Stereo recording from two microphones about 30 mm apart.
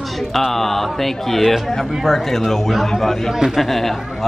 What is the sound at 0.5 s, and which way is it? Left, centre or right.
A man's voice, centre.